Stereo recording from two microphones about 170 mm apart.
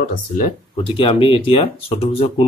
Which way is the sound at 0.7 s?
30° left (ahead or behind).